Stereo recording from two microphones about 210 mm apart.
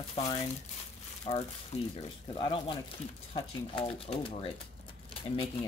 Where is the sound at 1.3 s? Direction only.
25° left (ahead or behind).